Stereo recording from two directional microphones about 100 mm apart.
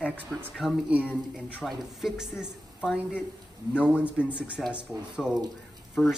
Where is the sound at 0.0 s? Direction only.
15° right (ahead or behind).